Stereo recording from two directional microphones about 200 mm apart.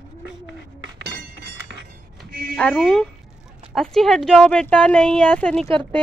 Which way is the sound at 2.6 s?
5° left (ahead or behind).